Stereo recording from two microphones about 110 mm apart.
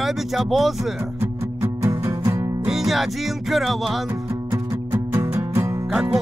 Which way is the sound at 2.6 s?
5° right (ahead or behind).